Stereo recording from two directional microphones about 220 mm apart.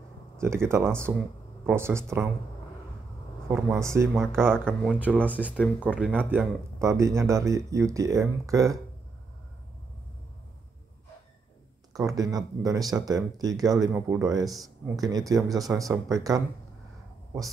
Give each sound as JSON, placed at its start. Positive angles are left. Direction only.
{"t": 0.4, "sound": "speech", "side_deg": -10}
{"t": 3.4, "sound": "speech", "side_deg": -10}
{"t": 4.4, "sound": "speech", "side_deg": 5}
{"t": 5.8, "sound": "speech", "side_deg": -5}
{"t": 12.2, "sound": "speech", "side_deg": -15}